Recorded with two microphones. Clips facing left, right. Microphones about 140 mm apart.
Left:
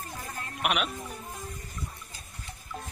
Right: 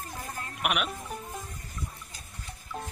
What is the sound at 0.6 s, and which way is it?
Speech, 5° right (ahead or behind).